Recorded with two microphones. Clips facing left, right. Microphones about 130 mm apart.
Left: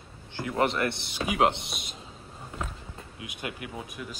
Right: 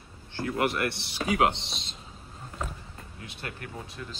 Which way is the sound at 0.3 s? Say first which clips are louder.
Left 1 dB; 20° left (ahead or behind).